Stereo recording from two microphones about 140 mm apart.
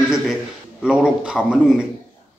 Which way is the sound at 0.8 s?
5° right (ahead or behind).